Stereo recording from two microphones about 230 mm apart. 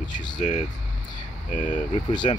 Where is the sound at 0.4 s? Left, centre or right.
Left.